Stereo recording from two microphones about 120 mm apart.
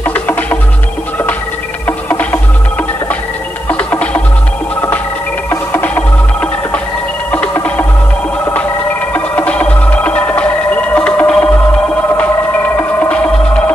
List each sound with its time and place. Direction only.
0.0 s music: 15° left (ahead or behind)
1.9 s music: 15° left (ahead or behind)
3.6 s music: 10° left (ahead or behind)
5.5 s music: 20° left (ahead or behind)
9.1 s music: 10° left (ahead or behind)
12.7 s music: 15° left (ahead or behind)